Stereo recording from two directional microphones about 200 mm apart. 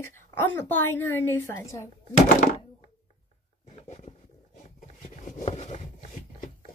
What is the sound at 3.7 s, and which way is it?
Roaring cats, 30° left (ahead or behind).